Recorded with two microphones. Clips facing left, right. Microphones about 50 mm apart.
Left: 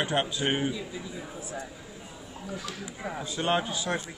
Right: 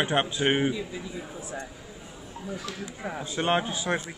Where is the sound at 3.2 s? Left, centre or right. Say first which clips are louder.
Right 2 dB; right.